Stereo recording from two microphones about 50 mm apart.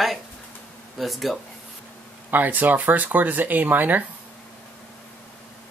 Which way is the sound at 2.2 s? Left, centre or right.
Right.